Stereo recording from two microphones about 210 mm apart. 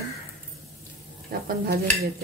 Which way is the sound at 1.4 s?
45° right (ahead or behind).